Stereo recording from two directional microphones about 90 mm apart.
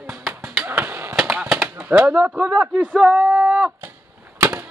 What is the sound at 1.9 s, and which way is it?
Speech, 15° right (ahead or behind).